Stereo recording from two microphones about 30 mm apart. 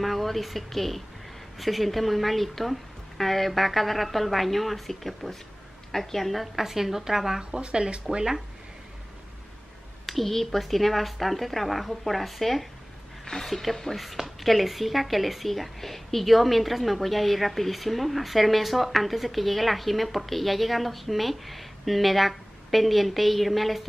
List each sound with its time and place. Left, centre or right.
0.0 s a woman's voice: centre
7.6 s speech: right
10.0 s a woman's voice: centre
13.2 s a sound: centre
13.5 s a woman's voice: centre